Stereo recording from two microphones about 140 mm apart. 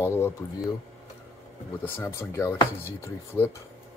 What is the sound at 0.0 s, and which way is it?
Speech, 20° left (ahead or behind).